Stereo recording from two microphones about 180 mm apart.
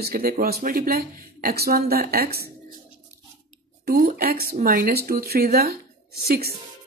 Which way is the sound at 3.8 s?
55° right (ahead or behind).